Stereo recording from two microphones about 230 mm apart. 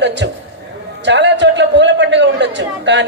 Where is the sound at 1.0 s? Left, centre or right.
Right.